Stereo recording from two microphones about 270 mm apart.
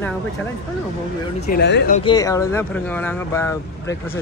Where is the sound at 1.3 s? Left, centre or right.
Left.